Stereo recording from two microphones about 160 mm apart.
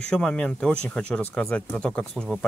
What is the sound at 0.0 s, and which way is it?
Speech, 5° left (ahead or behind).